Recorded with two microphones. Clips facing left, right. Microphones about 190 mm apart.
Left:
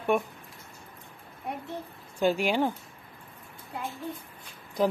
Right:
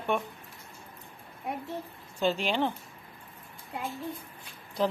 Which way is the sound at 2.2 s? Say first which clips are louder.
Left 3 dB; 10° left (ahead or behind).